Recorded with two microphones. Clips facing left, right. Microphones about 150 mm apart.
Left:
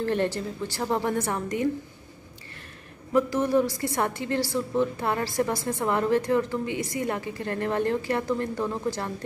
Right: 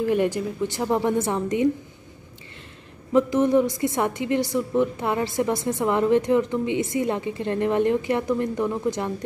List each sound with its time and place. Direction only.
0.0 s a woman's voice: 10° right (ahead or behind)
3.1 s a woman's voice: 20° right (ahead or behind)